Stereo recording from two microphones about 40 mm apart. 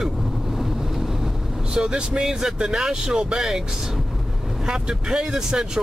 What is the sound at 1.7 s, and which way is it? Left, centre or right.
Speech, right.